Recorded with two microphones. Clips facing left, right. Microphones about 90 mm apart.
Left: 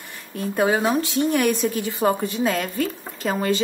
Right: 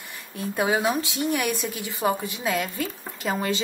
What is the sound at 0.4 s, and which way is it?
A woman's voice, 15° right (ahead or behind).